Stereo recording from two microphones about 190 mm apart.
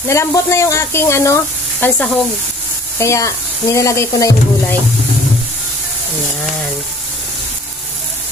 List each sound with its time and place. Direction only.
0.1 s speech: 15° left (ahead or behind)